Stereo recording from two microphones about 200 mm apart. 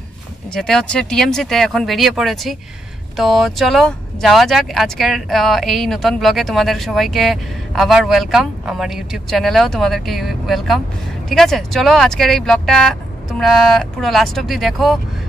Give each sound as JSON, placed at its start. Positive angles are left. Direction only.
{"t": 0.5, "sound": "speech", "side_deg": 5}